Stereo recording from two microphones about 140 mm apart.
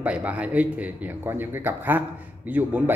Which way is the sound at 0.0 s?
10° right (ahead or behind).